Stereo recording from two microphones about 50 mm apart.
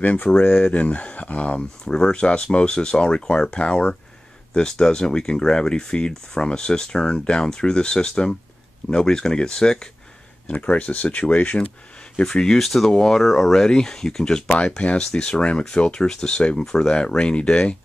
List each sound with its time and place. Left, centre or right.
0.0 s speech: left; by 9.8 s centre
10.5 s speech: left
12.2 s speech: centre
12.5 s speech: centre; by 17.7 s left